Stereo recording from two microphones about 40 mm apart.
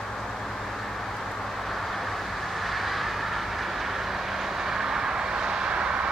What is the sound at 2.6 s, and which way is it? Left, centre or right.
Train, centre.